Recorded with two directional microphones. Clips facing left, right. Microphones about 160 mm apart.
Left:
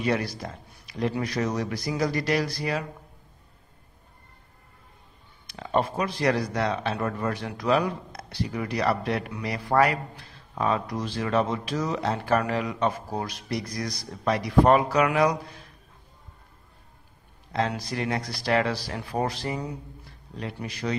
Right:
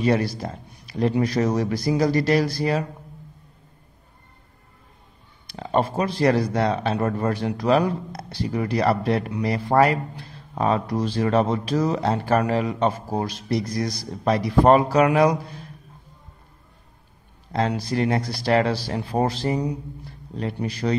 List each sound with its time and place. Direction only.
0.0 s a man's voice: 30° right (ahead or behind)
5.5 s a man's voice: 30° right (ahead or behind)
17.5 s a man's voice: 35° right (ahead or behind)